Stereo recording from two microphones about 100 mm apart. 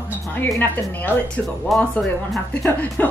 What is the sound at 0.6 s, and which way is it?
Speech, 15° left (ahead or behind).